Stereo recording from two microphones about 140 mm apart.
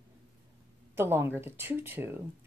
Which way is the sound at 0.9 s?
15° right (ahead or behind).